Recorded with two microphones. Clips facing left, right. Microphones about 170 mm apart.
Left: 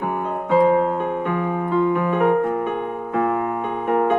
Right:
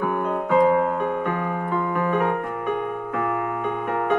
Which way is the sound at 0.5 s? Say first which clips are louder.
Left 2 dB; 30° left (ahead or behind).